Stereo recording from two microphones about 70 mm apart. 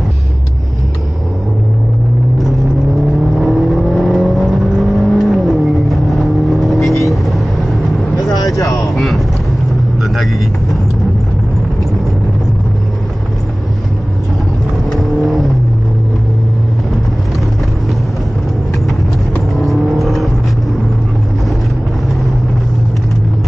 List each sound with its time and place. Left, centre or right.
3.3 s vehicle: centre
8.2 s vehicle: left
8.9 s vehicle: centre
14.9 s vehicle: centre
19.6 s vehicle: centre